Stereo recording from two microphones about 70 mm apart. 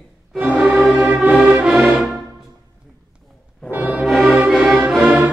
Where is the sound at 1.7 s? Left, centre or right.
Centre.